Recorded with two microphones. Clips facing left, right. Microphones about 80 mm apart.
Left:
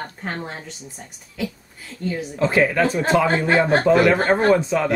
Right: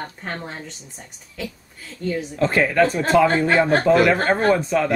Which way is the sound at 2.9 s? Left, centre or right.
Centre.